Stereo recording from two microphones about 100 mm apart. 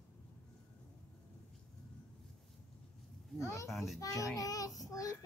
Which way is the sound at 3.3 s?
30° left (ahead or behind).